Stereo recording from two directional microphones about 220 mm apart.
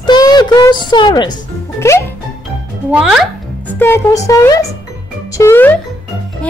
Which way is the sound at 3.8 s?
10° left (ahead or behind).